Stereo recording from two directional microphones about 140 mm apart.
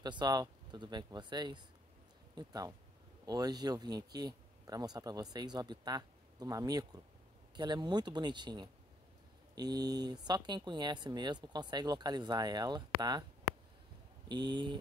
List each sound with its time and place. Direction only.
0.0 s speech: 30° right (ahead or behind)
14.3 s speech: 30° right (ahead or behind)